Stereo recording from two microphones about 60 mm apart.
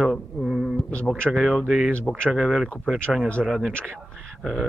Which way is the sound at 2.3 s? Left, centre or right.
Centre.